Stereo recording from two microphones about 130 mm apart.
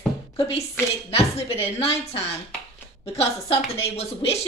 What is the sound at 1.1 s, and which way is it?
A woman's voice, 50° left (ahead or behind).